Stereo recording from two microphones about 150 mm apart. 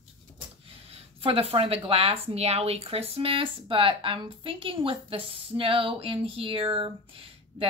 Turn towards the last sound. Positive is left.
turn(degrees=-35)  # may be behind; listen again after turning